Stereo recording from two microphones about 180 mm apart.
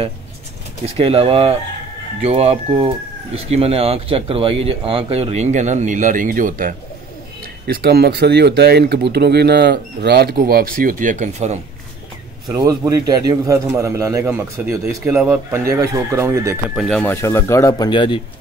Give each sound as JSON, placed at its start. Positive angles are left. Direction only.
{"t": 0.9, "sound": "speech", "side_deg": -30}
{"t": 7.6, "sound": "speech", "side_deg": -60}
{"t": 12.4, "sound": "a man's voice", "side_deg": -20}
{"t": 16.7, "sound": "speech", "side_deg": 0}
{"t": 17.0, "sound": "speech", "side_deg": 15}